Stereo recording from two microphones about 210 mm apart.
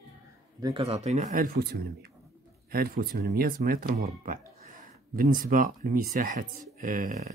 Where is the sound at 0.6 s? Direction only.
25° right (ahead or behind).